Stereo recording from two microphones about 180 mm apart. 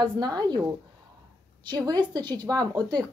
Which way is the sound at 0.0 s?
25° right (ahead or behind).